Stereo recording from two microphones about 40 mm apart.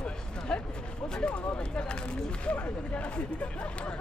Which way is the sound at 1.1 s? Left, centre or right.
Left.